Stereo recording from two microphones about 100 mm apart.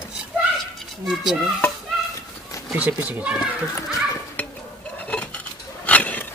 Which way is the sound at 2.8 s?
15° right (ahead or behind).